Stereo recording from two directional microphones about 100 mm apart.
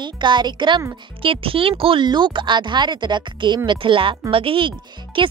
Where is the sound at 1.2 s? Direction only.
65° right (ahead or behind).